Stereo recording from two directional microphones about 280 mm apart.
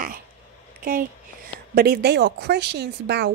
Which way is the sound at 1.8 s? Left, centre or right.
Right.